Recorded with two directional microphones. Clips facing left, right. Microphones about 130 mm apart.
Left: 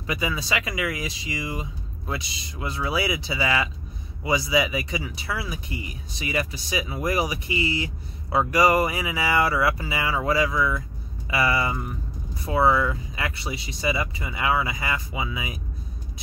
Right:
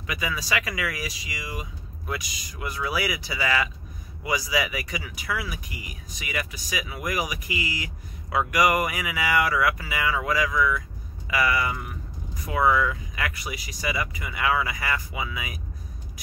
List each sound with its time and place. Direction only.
0.0 s speech: 25° left (ahead or behind)